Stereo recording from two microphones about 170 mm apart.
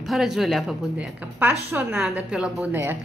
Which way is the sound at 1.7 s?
15° right (ahead or behind).